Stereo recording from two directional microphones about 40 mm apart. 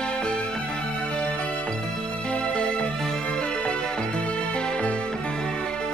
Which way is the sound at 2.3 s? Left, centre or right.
Left.